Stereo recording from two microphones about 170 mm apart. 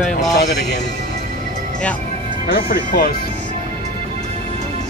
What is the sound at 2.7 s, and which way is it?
Speech, 55° left (ahead or behind).